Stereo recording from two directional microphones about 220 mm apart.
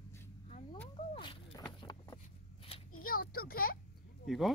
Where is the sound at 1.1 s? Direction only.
20° left (ahead or behind).